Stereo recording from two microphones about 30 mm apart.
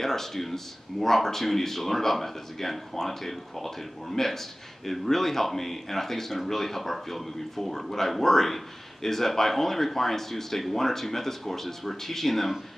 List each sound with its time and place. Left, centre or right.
0.0 s speech: centre